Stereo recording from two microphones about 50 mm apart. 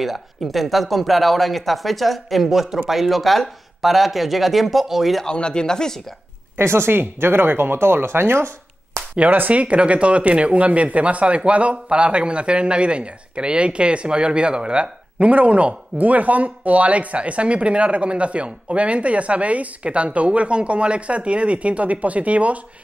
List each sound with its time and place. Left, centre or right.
0.0 s speech: centre
5.2 s speech: centre
6.5 s speech: right
9.1 s speech: right